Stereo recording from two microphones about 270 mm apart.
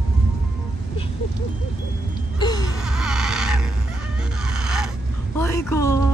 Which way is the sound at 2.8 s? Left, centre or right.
Centre.